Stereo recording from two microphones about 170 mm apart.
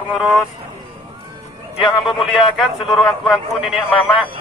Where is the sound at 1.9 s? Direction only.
Centre (ahead or behind).